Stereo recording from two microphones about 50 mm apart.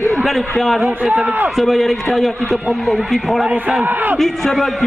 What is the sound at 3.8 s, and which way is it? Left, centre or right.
Speech, right.